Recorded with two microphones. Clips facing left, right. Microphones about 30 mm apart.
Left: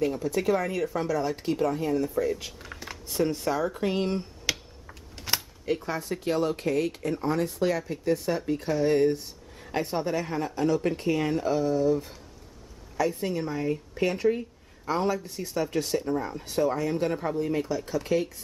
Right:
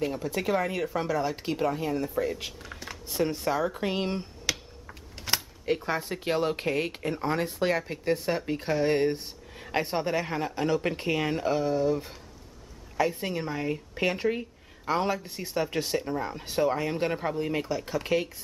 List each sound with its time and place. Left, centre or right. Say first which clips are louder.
0.0 s speech: left 3 dB; centre
2.6 s speech: even; centre
4.5 s typewriter: even; centre
5.9 s speech: even; right
16.3 s speech: right 2 dB; right